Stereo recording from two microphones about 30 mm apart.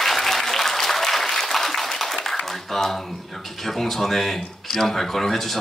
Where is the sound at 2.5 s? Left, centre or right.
Centre.